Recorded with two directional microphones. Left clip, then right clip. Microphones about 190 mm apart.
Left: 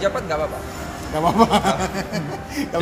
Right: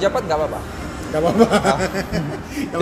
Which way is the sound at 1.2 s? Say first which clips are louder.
Right 1 dB; 30° left (ahead or behind).